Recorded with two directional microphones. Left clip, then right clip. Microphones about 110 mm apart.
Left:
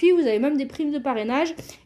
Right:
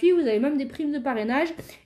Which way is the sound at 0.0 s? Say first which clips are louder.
Left 2 dB; 45° left (ahead or behind).